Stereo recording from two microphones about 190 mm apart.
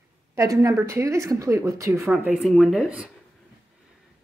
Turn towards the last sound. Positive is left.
turn(degrees=-5)  # may be behind; listen again after turning